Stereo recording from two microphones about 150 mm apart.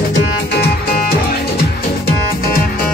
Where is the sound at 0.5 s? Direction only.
90° left.